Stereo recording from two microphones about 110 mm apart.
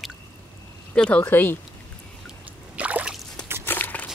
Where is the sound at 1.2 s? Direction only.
20° left (ahead or behind).